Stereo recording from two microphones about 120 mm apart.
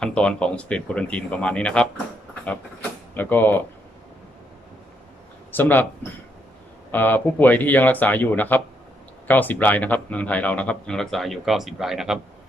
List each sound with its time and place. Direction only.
0.0 s speech: 10° left (ahead or behind)
3.2 s speech: 15° left (ahead or behind)
5.5 s speech: 15° left (ahead or behind)
6.9 s speech: 15° left (ahead or behind); by 12.2 s 5° right (ahead or behind)